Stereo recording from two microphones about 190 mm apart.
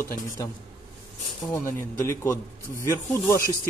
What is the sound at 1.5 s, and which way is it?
Speech, 10° left (ahead or behind).